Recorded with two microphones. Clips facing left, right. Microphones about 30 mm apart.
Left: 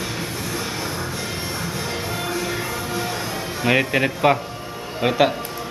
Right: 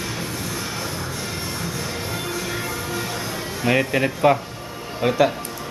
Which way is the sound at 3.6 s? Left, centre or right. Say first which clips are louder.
Left 1 dB; centre.